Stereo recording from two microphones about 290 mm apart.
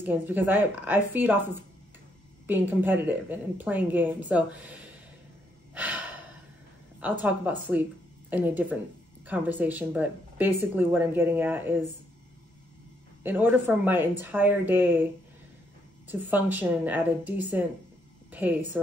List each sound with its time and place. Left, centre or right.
0.0 s speech: centre
2.4 s a woman's voice: centre
7.0 s a woman's voice: centre
13.2 s speech: centre
16.1 s a woman's voice: centre